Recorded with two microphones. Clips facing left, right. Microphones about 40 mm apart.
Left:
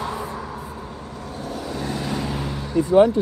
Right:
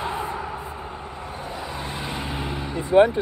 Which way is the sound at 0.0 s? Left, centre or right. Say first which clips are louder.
Even; right.